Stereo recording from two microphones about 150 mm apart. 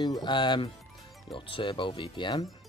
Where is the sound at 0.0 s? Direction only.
30° left (ahead or behind).